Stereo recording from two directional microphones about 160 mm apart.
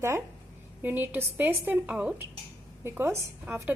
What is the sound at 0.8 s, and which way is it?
Speech, 10° right (ahead or behind).